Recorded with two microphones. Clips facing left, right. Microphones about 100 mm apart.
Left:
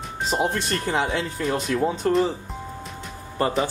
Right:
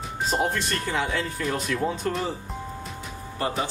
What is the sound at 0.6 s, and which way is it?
Speech, 30° left (ahead or behind).